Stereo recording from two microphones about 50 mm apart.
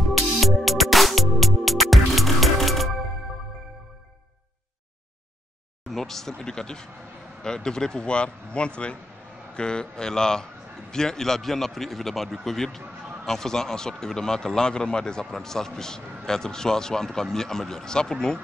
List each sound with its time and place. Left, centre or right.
0.0 s music: centre
5.9 s a man's voice: centre